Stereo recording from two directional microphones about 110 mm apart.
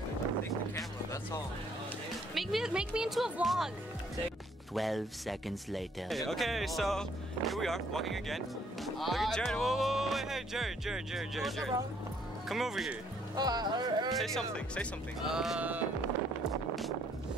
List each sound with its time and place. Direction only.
2.3 s speech: centre (ahead or behind)
4.7 s speech: centre (ahead or behind)
13.4 s speech: 40° right (ahead or behind)
14.1 s speech: 5° left (ahead or behind)